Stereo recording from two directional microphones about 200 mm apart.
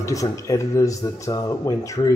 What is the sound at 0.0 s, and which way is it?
A man's voice, 15° left (ahead or behind).